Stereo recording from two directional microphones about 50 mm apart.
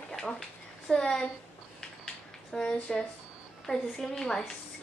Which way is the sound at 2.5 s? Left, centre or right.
Centre.